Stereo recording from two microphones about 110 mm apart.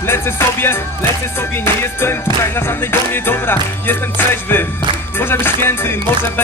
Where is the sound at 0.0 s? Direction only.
20° left (ahead or behind).